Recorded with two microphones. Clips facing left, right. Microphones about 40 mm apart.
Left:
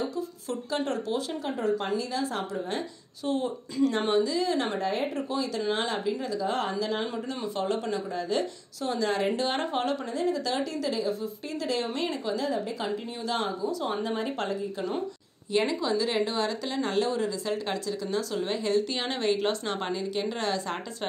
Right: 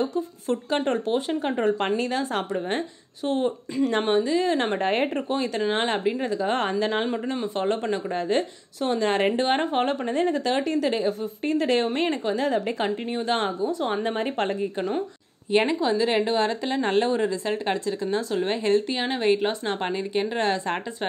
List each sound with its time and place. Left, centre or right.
0.0 s a woman's voice: right
1.4 s speech: right
3.3 s a woman's voice: right
7.1 s a woman's voice: right
9.6 s a woman's voice: right
10.1 s speech: right
12.4 s speech: right
15.5 s a woman's voice: right
18.9 s a woman's voice: centre; by 20.8 s right